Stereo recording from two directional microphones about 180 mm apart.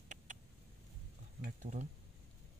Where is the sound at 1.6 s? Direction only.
45° right (ahead or behind).